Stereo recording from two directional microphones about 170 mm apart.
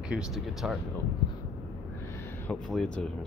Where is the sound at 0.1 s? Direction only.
5° right (ahead or behind).